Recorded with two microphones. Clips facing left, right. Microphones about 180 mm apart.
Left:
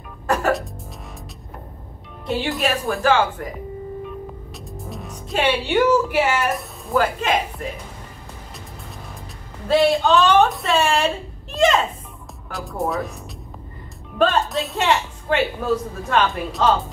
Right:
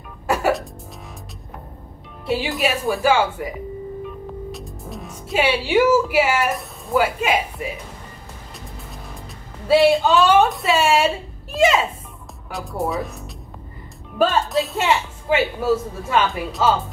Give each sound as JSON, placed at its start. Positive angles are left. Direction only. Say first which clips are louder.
{"t": 0.3, "sound": "music", "louder": "even", "side_deg": -5}
{"t": 2.2, "sound": "a woman's voice", "louder": "right 1 dB", "side_deg": -5}
{"t": 9.7, "sound": "a woman's voice", "louder": "right 2 dB", "side_deg": -5}
{"t": 14.1, "sound": "a woman's voice", "louder": "right 1 dB", "side_deg": 0}